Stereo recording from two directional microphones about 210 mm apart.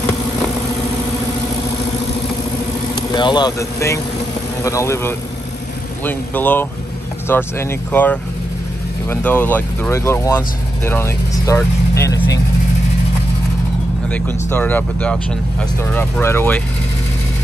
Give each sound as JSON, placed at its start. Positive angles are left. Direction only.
{"t": 3.0, "sound": "speech", "side_deg": 20}
{"t": 14.0, "sound": "speech", "side_deg": 10}